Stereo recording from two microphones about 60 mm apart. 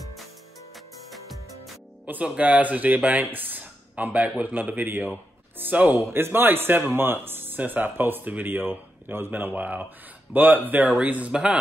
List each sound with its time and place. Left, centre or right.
0.7 s music: centre
2.2 s speech: right